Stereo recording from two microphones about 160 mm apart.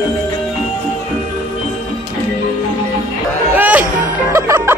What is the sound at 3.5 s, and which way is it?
Music, 10° right (ahead or behind).